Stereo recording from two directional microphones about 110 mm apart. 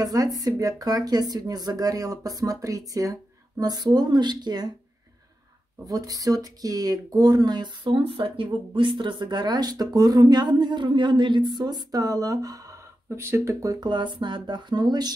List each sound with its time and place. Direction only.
0.0 s speech: 35° right (ahead or behind)
5.9 s speech: 35° right (ahead or behind)